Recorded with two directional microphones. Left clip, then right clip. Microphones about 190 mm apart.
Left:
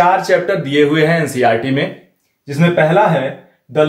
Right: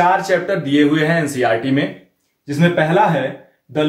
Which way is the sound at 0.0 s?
25° left (ahead or behind).